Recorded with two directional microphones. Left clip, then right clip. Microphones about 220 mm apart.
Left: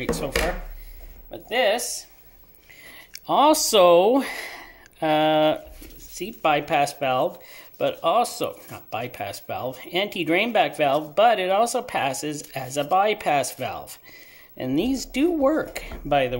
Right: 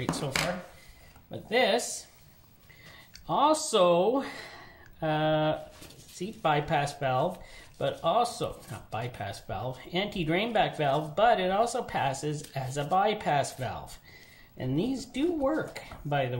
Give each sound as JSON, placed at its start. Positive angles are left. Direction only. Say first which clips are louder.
{"t": 1.3, "sound": "speech", "louder": "left 4 dB", "side_deg": 25}
{"t": 3.1, "sound": "speech", "louder": "left 7 dB", "side_deg": 45}